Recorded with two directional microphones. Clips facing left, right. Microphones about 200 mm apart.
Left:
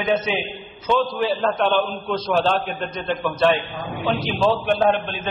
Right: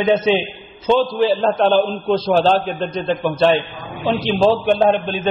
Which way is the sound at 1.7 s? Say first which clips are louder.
Right 6 dB; centre (ahead or behind).